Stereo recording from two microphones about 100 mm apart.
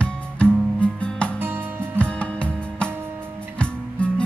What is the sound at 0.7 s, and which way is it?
Music, 10° left (ahead or behind).